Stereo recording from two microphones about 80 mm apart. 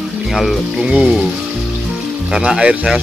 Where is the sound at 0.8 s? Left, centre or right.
Centre.